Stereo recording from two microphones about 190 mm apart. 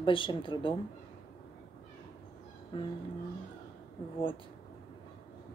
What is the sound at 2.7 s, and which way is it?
Speech, 25° left (ahead or behind).